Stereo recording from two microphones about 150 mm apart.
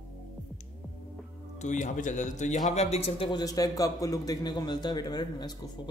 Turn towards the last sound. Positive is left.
turn(degrees=25)  # may be behind; listen again after turning